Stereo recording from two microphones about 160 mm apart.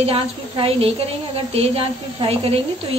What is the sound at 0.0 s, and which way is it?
A woman's voice, 35° right (ahead or behind).